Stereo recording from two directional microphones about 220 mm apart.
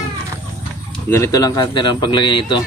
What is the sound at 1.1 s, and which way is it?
Speech, 15° left (ahead or behind).